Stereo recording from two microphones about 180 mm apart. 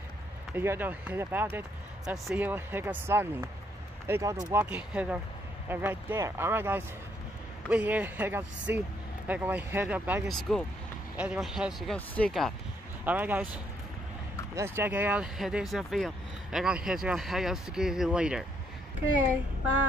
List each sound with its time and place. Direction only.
0.6 s speech: 10° right (ahead or behind)
13.0 s speech: 10° right (ahead or behind)